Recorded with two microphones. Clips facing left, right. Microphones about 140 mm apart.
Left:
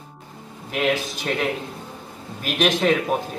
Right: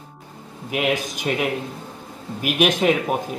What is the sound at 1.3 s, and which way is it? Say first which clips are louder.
A man's voice: right 2 dB; 10° right (ahead or behind).